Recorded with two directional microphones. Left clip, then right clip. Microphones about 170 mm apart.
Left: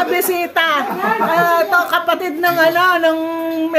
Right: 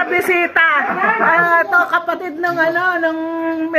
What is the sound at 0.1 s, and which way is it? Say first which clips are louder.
A woman's voice: right 2 dB; 20° left (ahead or behind).